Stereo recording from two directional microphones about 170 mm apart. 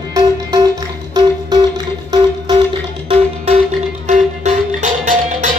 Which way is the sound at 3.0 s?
40° right (ahead or behind).